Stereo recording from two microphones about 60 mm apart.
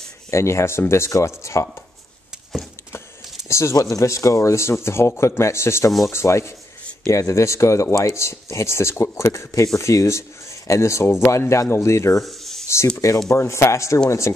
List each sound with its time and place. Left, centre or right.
0.3 s speech: left
3.4 s a sound: left
3.9 s speech: left
12.2 s snake: centre
12.9 s speech: left
13.3 s speech: left